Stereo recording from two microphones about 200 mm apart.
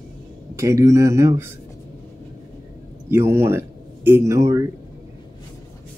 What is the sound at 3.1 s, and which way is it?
Speech, 10° right (ahead or behind).